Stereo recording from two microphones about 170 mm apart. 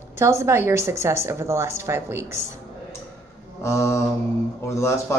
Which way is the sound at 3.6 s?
15° left (ahead or behind).